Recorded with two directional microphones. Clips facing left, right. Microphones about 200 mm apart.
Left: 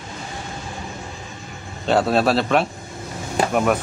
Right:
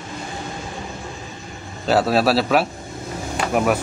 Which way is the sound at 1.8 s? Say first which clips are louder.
Even; 5° right (ahead or behind).